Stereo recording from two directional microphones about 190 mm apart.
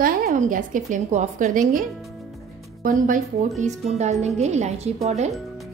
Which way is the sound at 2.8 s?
45° right (ahead or behind).